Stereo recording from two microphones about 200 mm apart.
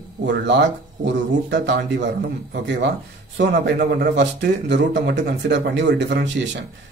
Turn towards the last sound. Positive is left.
turn(degrees=-65)  # may be behind; listen again after turning